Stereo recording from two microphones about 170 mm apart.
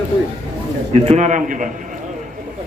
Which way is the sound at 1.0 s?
45° right (ahead or behind).